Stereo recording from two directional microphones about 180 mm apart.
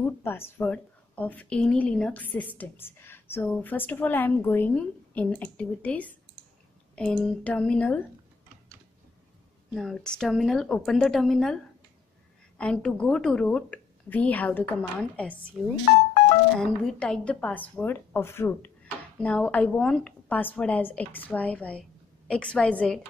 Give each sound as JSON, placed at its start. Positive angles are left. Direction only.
{"t": 0.2, "sound": "a woman's voice", "side_deg": 15}
{"t": 9.8, "sound": "a woman's voice", "side_deg": 0}
{"t": 15.9, "sound": "speech", "side_deg": 40}
{"t": 16.5, "sound": "a woman's voice", "side_deg": 5}